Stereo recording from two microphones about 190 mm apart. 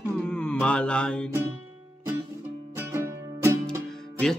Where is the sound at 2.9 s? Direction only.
15° right (ahead or behind).